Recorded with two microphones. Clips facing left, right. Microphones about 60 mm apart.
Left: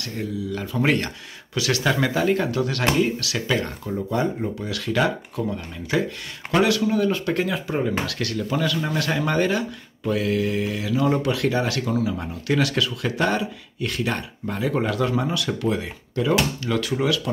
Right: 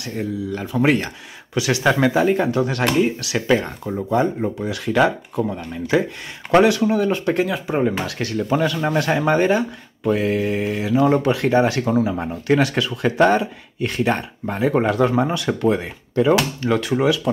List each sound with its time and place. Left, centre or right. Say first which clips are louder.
0.7 s speech: right 4 dB; centre